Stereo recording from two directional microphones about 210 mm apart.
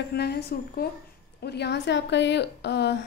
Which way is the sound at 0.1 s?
50° left (ahead or behind).